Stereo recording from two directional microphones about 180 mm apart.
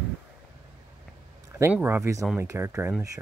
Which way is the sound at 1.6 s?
10° right (ahead or behind).